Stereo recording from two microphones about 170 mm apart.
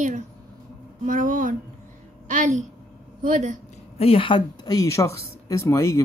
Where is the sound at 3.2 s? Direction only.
50° right (ahead or behind).